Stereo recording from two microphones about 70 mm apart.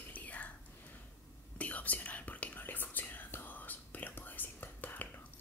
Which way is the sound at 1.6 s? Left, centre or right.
Left.